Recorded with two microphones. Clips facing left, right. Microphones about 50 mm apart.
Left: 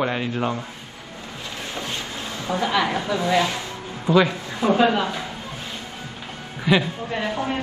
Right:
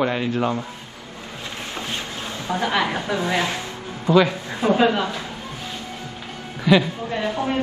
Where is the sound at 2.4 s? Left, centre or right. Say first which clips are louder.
Even; right.